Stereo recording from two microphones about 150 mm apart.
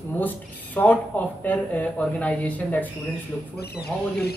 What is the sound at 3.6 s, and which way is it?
Speech, 90° left.